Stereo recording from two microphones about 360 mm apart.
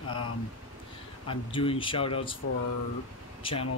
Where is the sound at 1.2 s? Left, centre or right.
Centre.